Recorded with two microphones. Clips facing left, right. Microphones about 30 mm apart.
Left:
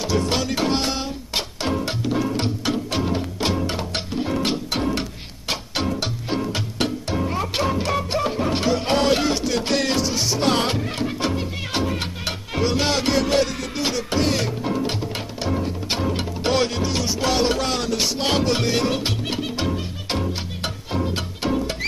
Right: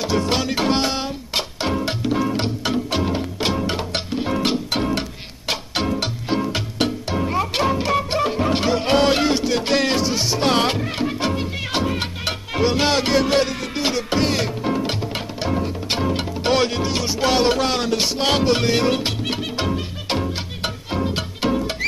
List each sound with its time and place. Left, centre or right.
0.0 s music: centre